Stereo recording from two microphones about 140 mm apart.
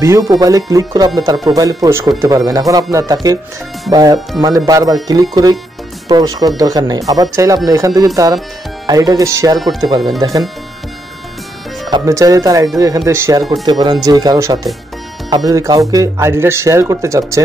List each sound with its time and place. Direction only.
0.0 s speech: 25° right (ahead or behind)
11.9 s speech: 20° right (ahead or behind)
13.5 s speech: 30° right (ahead or behind)